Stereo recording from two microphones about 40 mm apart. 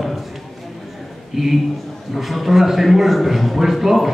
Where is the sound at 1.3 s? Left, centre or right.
Centre.